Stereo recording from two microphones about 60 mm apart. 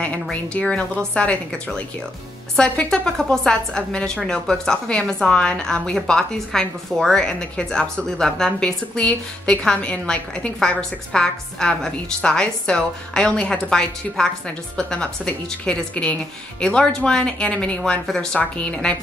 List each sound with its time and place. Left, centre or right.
0.0 s a woman's voice: left
2.5 s a woman's voice: centre